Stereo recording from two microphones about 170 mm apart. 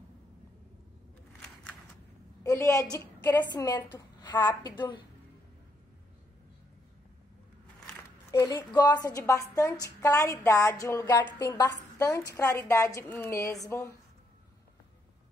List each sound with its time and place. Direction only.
2.4 s a woman's voice: 20° left (ahead or behind)
8.3 s a woman's voice: 20° left (ahead or behind)